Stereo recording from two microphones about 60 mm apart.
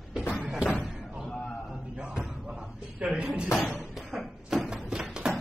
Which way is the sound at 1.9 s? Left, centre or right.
Centre.